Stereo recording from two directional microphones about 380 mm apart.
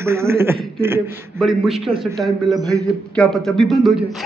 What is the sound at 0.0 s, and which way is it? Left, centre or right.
A man's voice, centre.